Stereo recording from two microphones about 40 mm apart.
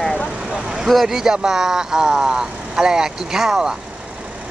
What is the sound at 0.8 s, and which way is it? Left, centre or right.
Speech, centre.